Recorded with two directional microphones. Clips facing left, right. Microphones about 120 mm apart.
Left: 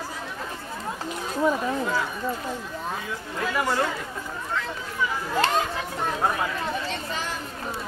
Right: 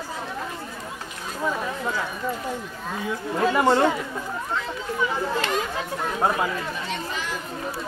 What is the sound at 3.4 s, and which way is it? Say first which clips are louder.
Speech: right 6 dB; 25° right (ahead or behind).